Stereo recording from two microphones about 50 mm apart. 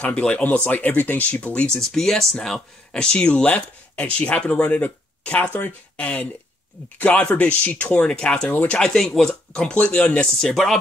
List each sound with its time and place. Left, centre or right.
0.0 s speech: left
1.8 s speech: centre; by 5.5 s left
7.0 s speech: left
7.9 s speech: centre
9.0 s speech: centre
9.5 s speech: centre
10.5 s speech: centre